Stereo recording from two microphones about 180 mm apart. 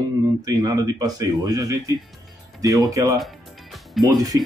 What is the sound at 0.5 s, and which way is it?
Speech, 20° right (ahead or behind).